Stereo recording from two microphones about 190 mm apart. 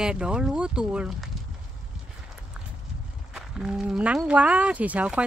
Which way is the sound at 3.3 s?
5° right (ahead or behind).